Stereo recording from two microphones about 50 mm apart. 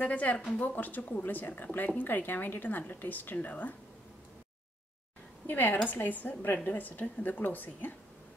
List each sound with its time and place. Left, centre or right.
0.0 s a woman's voice: left
5.5 s a woman's voice: left